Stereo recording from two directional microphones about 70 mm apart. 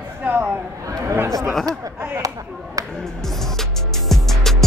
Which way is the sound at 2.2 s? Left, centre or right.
Right.